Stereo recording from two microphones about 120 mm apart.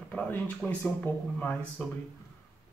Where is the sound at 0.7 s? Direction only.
10° left (ahead or behind).